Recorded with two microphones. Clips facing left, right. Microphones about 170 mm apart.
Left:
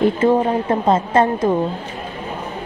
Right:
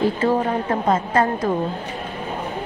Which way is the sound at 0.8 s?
25° left (ahead or behind).